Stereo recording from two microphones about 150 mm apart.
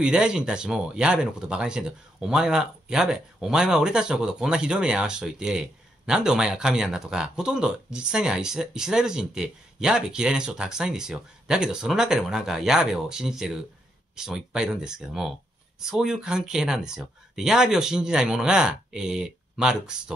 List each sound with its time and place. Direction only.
0.0 s speech: 5° right (ahead or behind)